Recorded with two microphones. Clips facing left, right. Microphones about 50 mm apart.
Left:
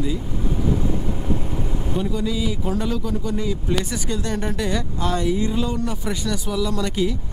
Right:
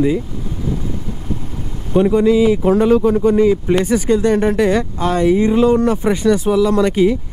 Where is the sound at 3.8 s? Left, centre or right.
Right.